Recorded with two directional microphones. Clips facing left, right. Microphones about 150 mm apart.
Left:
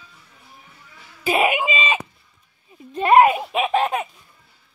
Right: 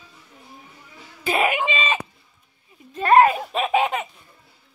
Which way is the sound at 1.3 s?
15° left (ahead or behind).